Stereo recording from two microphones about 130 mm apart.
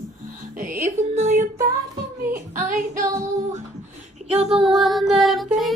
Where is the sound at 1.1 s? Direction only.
65° right (ahead or behind).